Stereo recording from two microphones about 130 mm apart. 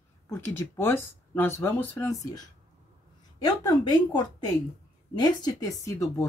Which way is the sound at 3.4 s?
30° left (ahead or behind).